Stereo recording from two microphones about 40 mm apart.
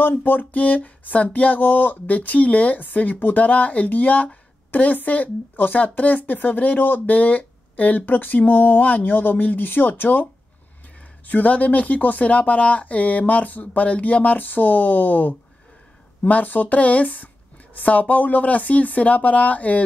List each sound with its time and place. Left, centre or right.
0.2 s a woman's voice: left
11.2 s a woman's voice: left